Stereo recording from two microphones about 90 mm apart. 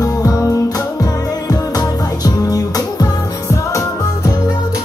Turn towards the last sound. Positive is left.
turn(degrees=45)  # may be behind; listen again after turning